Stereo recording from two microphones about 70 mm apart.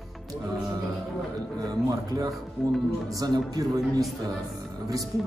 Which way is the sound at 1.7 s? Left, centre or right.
Right.